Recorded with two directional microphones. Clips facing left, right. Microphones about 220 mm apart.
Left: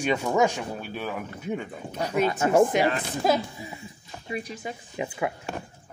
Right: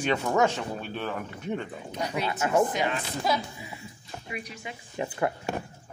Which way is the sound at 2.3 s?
30° left (ahead or behind).